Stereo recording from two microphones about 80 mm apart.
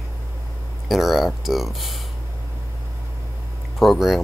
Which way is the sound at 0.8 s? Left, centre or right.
Centre.